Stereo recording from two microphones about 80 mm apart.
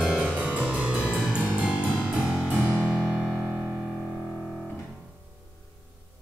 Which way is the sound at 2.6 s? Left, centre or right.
Left.